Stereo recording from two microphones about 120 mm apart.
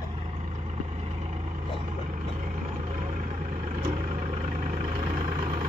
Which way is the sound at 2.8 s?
75° right (ahead or behind).